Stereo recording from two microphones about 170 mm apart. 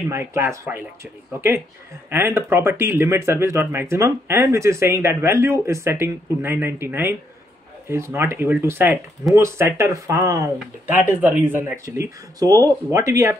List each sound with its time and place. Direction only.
0.1 s speech: 15° right (ahead or behind)
2.0 s speech: 15° right (ahead or behind)